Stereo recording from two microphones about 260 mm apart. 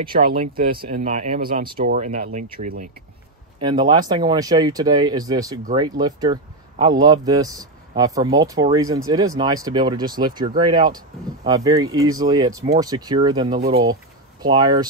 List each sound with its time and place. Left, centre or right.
0.1 s speech: right
3.5 s a man's voice: centre